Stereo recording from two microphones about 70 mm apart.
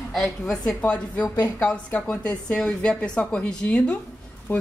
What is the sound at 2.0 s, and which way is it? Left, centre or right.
A woman's voice, centre.